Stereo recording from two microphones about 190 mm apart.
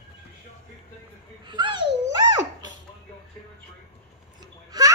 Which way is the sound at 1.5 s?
25° right (ahead or behind).